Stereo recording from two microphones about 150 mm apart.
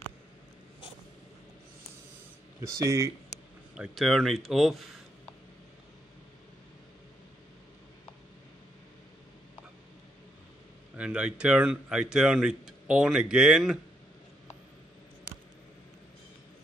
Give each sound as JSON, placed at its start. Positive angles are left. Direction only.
{"t": 2.6, "sound": "speech", "side_deg": -20}
{"t": 3.7, "sound": "speech", "side_deg": -5}
{"t": 11.0, "sound": "speech", "side_deg": -10}